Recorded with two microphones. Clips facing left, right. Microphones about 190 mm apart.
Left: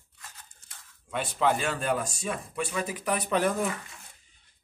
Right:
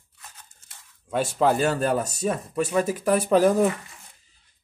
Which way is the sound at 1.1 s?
40° right (ahead or behind).